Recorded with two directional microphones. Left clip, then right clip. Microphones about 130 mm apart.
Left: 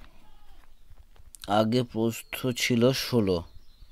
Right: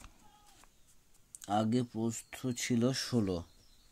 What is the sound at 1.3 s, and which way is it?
Speech, 40° left (ahead or behind).